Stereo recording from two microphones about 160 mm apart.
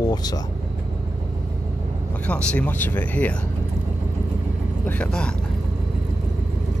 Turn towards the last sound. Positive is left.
turn(degrees=10)  # may be behind; listen again after turning